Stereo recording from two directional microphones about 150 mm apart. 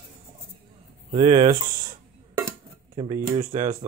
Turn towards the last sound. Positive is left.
turn(degrees=-30)  # may be behind; listen again after turning